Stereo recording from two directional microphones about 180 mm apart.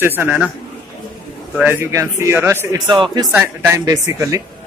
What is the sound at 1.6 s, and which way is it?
Speech, 10° right (ahead or behind).